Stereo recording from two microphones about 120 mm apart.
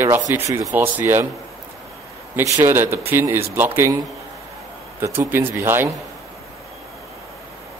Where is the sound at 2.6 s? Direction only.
20° right (ahead or behind).